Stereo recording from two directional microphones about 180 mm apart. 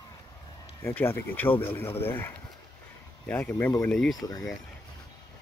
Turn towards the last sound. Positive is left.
turn(degrees=0)  # may be behind; listen again after turning